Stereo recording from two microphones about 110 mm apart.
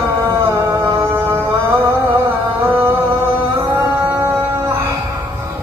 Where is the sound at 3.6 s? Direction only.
35° right (ahead or behind).